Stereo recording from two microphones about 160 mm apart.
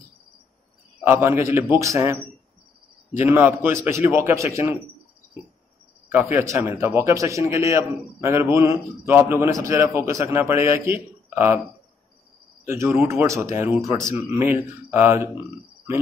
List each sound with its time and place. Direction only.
1.0 s a man's voice: 15° right (ahead or behind)
3.2 s a man's voice: 10° right (ahead or behind)
6.0 s a man's voice: 15° right (ahead or behind)
12.6 s a man's voice: 15° right (ahead or behind)